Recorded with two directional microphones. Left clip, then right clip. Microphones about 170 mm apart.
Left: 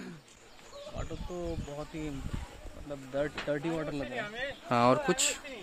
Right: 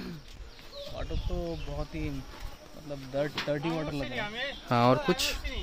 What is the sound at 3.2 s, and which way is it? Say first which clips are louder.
Speech: right 2 dB; centre (ahead or behind).